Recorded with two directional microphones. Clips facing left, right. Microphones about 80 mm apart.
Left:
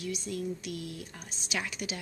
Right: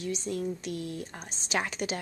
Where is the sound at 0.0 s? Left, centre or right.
Right.